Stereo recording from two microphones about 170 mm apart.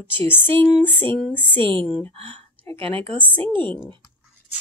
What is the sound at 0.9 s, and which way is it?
Speech, 30° right (ahead or behind).